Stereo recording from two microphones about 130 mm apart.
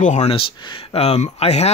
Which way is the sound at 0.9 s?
55° left (ahead or behind).